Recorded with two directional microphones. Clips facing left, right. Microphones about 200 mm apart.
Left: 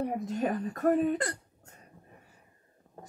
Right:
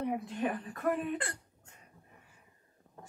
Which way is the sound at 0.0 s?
40° left (ahead or behind).